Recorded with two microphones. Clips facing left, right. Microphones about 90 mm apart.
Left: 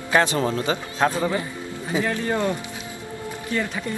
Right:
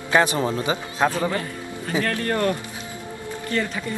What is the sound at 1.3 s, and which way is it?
Speech, 10° left (ahead or behind).